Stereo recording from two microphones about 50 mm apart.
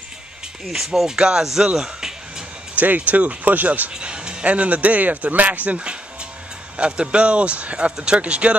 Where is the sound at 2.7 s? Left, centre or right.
Right.